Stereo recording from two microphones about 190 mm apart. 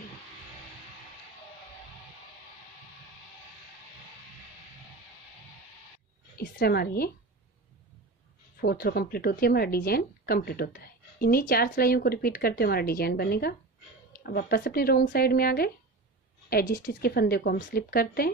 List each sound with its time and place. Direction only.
6.3 s a woman's voice: 50° left (ahead or behind)
8.5 s a woman's voice: 55° left (ahead or behind)